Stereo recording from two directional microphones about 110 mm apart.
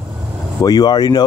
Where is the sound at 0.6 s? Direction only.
35° left (ahead or behind).